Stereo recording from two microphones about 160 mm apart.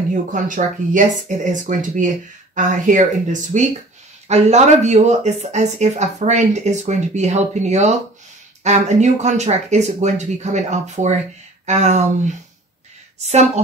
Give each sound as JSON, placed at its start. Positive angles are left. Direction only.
{"t": 0.1, "sound": "speech", "side_deg": -55}